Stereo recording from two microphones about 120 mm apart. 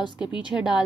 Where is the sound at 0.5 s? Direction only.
5° right (ahead or behind).